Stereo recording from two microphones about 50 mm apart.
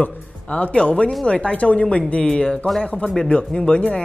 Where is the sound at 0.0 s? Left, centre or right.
Left.